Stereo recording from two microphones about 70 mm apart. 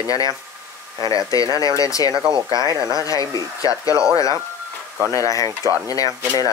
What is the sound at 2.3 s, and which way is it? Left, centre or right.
Speech, right.